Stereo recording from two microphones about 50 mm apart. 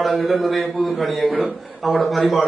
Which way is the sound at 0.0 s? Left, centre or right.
Centre.